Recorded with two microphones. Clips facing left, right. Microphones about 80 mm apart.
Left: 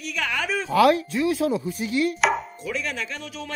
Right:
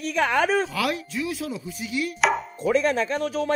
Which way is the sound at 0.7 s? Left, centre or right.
Left.